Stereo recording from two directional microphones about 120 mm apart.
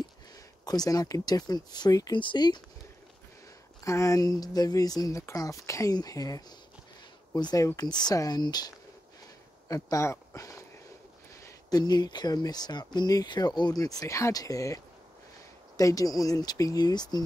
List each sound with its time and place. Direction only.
0.7 s speech: 35° left (ahead or behind)
3.8 s speech: 25° left (ahead or behind)
9.7 s speech: 30° left (ahead or behind)
15.8 s speech: 30° left (ahead or behind)